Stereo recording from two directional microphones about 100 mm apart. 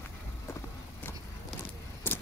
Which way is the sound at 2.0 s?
20° left (ahead or behind).